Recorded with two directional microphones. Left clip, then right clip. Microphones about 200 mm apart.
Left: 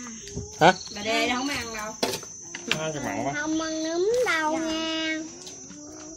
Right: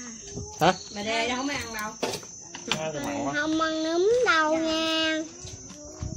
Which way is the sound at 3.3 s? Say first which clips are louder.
Right 6 dB; 35° right (ahead or behind).